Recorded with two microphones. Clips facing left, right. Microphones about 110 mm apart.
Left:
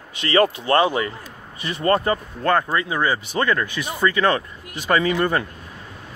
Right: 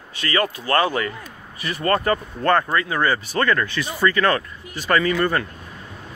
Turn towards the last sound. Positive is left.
turn(degrees=15)  # may be behind; listen again after turning